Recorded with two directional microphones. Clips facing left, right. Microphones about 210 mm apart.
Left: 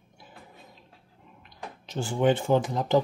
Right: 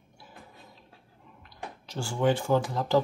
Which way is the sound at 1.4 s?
20° left (ahead or behind).